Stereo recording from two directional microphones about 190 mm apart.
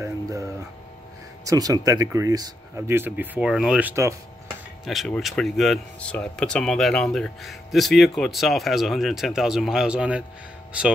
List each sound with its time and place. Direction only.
0.0 s music: 15° right (ahead or behind)
1.4 s speech: 20° right (ahead or behind)
4.8 s speech: centre (ahead or behind)